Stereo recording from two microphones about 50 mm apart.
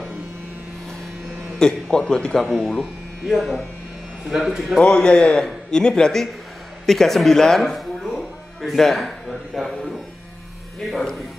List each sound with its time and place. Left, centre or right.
1.6 s a man's voice: centre
2.8 s speech: centre
4.7 s a man's voice: centre
10.8 s speech: centre